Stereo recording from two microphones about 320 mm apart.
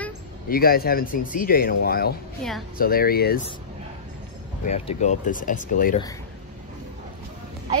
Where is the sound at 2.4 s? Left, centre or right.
Centre.